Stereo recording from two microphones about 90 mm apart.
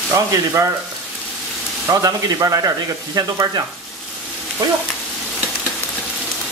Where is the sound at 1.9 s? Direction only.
45° right (ahead or behind).